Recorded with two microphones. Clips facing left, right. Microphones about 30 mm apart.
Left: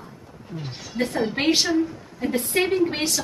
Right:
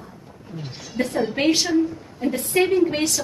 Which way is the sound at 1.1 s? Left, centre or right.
Centre.